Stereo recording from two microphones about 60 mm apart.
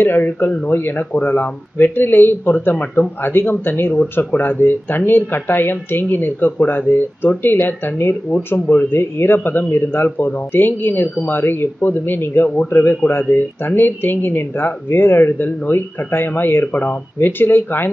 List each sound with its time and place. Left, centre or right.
0.0 s speech: left